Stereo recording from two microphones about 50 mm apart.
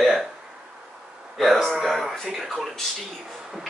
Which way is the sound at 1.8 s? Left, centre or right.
Centre.